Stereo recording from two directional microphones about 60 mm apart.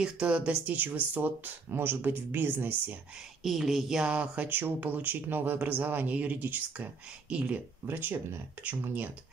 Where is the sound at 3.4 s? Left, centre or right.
Centre.